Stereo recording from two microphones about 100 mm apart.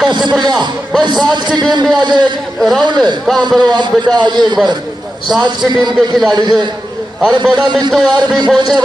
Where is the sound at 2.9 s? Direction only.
50° right (ahead or behind).